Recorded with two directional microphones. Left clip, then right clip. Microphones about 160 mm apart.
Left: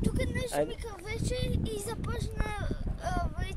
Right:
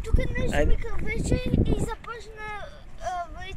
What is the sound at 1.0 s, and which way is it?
Speech, 15° left (ahead or behind).